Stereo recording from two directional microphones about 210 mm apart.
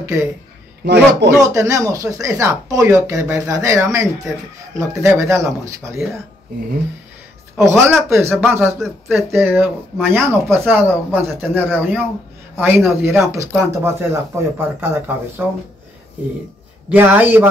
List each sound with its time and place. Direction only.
0.0 s speech: 15° right (ahead or behind)
1.5 s speech: 15° right (ahead or behind)
7.5 s speech: 15° right (ahead or behind)
16.9 s speech: 10° right (ahead or behind)